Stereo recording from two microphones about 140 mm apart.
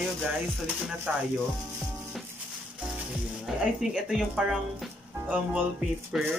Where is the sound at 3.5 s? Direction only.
5° right (ahead or behind).